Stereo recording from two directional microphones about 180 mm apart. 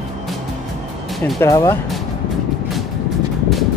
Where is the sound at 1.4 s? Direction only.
15° left (ahead or behind).